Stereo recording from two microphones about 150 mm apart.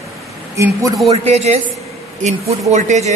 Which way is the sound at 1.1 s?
45° right (ahead or behind).